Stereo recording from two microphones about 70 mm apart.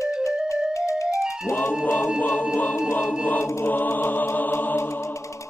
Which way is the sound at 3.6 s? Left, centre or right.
Left.